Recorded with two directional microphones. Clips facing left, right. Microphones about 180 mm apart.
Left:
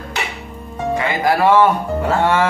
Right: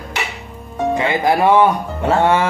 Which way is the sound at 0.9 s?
20° right (ahead or behind).